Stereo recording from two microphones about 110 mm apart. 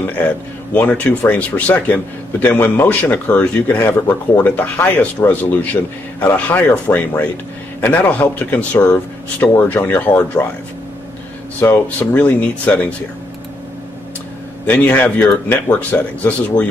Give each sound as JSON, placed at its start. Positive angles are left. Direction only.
{"t": 0.7, "sound": "speech", "side_deg": 15}
{"t": 11.7, "sound": "speech", "side_deg": 15}
{"t": 14.7, "sound": "speech", "side_deg": 15}